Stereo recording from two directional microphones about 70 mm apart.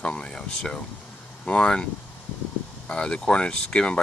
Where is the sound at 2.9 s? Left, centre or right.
Centre.